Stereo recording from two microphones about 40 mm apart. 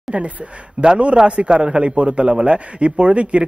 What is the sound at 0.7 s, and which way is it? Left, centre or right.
A man's voice, right.